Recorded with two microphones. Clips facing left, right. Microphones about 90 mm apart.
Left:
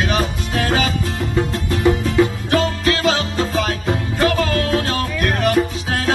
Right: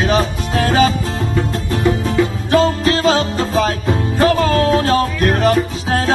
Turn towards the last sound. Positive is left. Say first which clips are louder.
# right 3 dB
turn(degrees=-30)  # may be behind; listen again after turning